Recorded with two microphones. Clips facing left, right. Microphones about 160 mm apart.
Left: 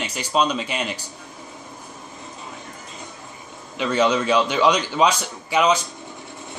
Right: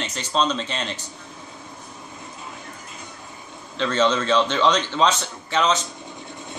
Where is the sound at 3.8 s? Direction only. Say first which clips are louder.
Left 1 dB; 10° left (ahead or behind).